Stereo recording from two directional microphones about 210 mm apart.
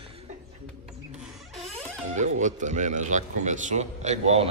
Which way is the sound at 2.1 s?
35° right (ahead or behind).